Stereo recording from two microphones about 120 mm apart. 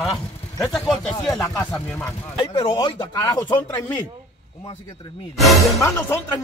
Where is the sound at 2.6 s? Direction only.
45° left (ahead or behind).